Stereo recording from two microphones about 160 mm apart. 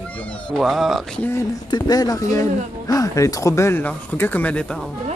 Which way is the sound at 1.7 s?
25° left (ahead or behind).